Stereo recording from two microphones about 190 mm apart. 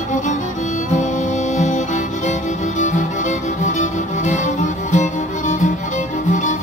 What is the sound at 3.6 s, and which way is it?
Music, 40° left (ahead or behind).